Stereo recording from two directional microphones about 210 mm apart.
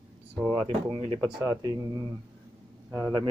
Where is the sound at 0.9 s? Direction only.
25° right (ahead or behind).